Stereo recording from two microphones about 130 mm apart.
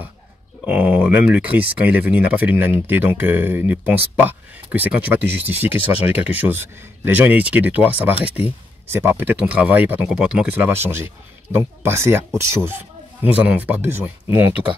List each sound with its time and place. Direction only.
0.7 s speech: 15° right (ahead or behind)